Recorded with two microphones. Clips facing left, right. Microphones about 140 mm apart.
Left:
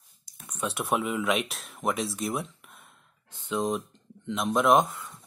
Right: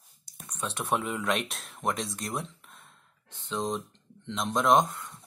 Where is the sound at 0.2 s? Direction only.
10° left (ahead or behind).